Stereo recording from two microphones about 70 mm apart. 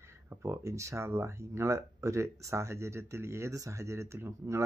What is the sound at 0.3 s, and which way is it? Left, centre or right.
Speech, right.